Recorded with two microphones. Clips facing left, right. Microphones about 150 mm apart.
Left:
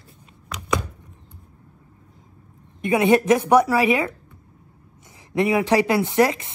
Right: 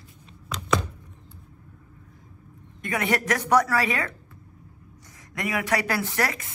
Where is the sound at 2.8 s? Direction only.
20° left (ahead or behind).